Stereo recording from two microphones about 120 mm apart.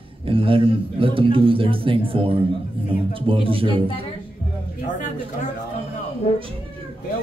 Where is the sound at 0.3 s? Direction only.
50° right (ahead or behind).